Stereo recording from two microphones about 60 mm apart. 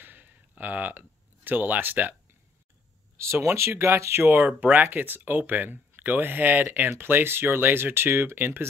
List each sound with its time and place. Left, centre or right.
0.0 s a sound: right
3.2 s speech: right
4.3 s speech: right